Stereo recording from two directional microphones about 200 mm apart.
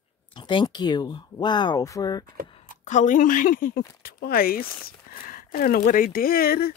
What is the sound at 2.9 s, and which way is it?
A woman's voice, 40° left (ahead or behind).